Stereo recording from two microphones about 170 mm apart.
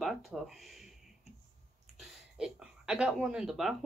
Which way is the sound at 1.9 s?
5° right (ahead or behind).